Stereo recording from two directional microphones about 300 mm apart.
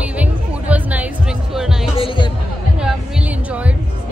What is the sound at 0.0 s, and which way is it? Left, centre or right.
Music, centre.